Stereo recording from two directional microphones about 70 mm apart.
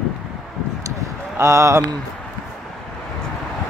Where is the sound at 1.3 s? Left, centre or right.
Right.